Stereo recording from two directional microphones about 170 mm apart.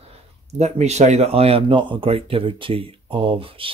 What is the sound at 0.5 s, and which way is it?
Speech, 40° right (ahead or behind).